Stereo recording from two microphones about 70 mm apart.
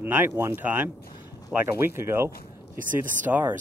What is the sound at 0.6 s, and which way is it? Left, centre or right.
Speech, right.